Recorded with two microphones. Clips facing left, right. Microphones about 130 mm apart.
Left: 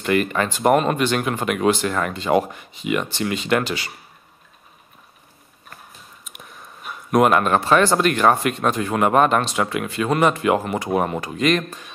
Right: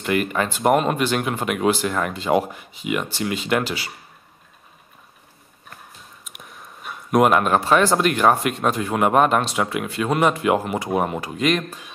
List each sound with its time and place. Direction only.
0.0 s speech: 5° right (ahead or behind)
6.2 s speech: centre (ahead or behind)